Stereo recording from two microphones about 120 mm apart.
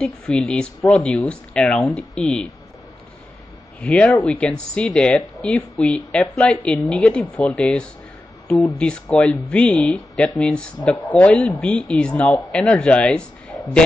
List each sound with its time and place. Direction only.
0.0 s speech: 5° left (ahead or behind)
3.8 s speech: 10° left (ahead or behind)